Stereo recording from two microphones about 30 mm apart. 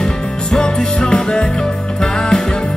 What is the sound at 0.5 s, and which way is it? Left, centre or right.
Music, left.